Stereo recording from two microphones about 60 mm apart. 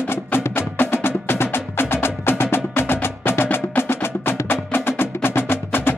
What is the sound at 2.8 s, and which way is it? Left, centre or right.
Music, left.